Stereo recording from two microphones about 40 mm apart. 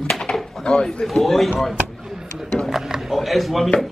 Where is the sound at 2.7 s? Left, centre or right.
Centre.